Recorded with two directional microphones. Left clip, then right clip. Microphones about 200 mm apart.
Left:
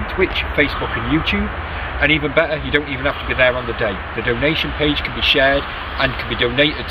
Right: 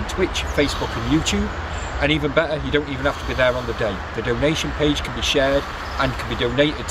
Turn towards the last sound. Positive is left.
turn(degrees=-15)  # may be behind; listen again after turning